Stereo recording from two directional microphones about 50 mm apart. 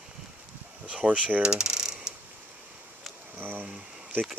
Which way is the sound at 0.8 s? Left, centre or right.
Right.